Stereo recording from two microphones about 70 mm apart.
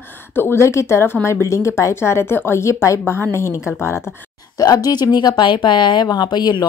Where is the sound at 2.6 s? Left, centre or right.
Left.